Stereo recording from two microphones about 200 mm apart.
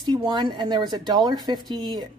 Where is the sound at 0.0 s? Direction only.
20° right (ahead or behind).